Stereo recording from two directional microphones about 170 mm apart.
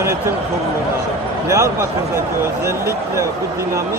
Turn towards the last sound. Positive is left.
turn(degrees=-15)  # may be behind; listen again after turning